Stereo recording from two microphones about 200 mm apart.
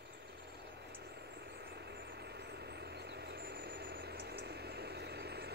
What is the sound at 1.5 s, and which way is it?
Vehicle, 55° right (ahead or behind).